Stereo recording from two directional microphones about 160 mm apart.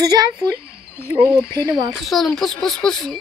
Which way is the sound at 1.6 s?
30° right (ahead or behind).